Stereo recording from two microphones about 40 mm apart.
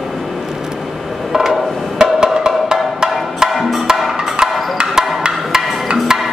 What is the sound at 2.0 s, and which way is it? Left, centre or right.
Music, centre.